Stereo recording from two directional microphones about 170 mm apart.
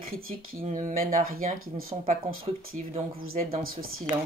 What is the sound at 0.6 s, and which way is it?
Speech, 45° right (ahead or behind).